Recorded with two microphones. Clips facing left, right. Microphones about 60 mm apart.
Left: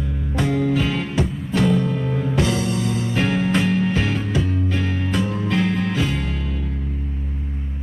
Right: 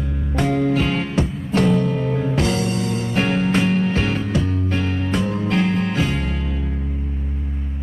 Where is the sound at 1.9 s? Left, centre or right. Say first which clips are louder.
Right 2 dB; right.